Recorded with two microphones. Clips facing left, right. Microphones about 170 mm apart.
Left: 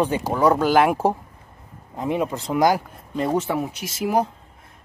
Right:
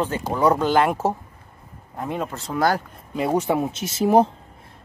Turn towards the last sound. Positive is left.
turn(degrees=-25)  # may be behind; listen again after turning